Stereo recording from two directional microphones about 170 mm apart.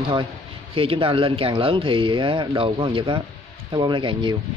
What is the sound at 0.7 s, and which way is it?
Speech, 30° right (ahead or behind).